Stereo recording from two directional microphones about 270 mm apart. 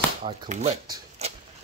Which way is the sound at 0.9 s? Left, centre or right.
Right.